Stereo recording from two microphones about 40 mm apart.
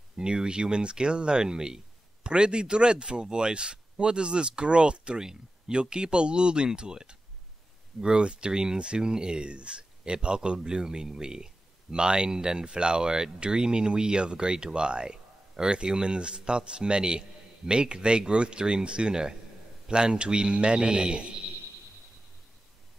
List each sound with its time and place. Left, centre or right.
0.1 s speech: centre